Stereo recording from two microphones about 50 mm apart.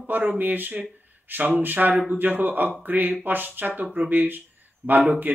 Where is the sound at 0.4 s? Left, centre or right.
Right.